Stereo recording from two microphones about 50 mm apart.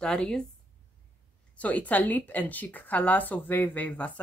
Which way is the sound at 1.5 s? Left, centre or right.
Left.